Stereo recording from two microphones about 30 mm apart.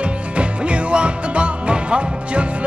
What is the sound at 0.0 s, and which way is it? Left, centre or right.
Music, right.